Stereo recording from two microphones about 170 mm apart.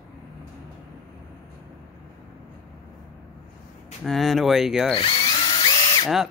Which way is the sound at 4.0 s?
Centre (ahead or behind).